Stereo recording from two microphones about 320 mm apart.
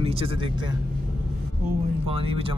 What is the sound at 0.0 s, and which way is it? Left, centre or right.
Speech, centre.